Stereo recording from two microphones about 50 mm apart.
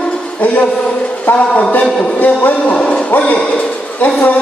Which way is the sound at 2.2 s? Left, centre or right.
Left.